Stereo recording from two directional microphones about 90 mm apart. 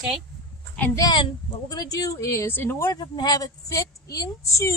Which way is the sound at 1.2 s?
50° left (ahead or behind).